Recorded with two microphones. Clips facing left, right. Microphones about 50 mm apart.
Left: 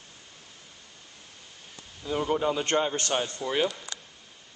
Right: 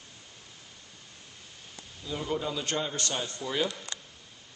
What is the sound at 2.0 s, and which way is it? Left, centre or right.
A man's voice, left.